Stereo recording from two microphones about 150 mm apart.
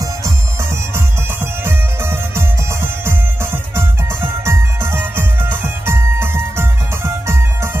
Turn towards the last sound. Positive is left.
turn(degrees=-15)  # may be behind; listen again after turning